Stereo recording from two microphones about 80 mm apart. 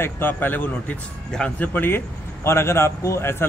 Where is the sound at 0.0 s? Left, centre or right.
Left.